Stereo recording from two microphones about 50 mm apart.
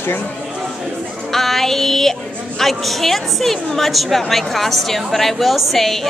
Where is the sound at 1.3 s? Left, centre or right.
Centre.